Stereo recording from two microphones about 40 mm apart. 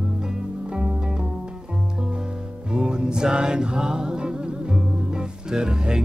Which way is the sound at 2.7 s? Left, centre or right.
Centre.